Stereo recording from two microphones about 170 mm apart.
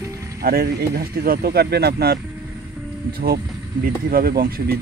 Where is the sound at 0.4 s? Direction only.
60° right (ahead or behind).